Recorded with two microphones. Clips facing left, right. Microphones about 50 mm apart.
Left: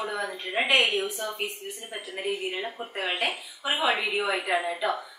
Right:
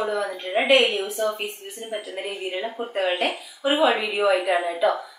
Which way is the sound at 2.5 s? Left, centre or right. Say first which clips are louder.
Right 6 dB; centre.